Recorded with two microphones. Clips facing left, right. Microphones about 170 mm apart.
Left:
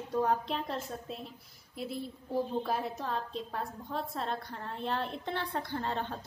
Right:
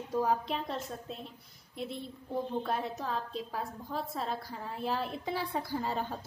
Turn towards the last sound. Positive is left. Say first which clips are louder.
# right 1 dB
turn(degrees=-5)  # may be behind; listen again after turning